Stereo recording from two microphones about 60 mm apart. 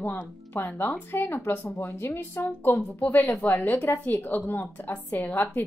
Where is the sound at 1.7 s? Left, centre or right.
Left.